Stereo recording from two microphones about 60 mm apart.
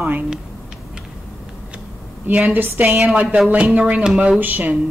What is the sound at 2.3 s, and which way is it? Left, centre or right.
Speech, right.